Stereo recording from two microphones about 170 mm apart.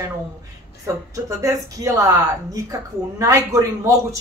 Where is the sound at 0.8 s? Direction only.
20° right (ahead or behind).